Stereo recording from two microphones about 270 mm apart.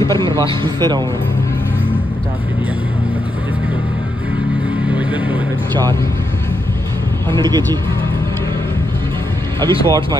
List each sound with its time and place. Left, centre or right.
0.7 s speech: centre
4.8 s music: centre
7.3 s speech: centre
9.6 s speech: centre